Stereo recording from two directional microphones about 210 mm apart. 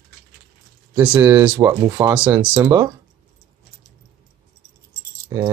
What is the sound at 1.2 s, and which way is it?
Speech, 10° right (ahead or behind).